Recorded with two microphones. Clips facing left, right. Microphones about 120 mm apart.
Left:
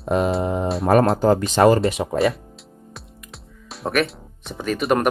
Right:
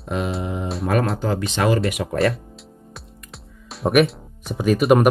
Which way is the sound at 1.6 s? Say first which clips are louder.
Left 3 dB; 35° left (ahead or behind).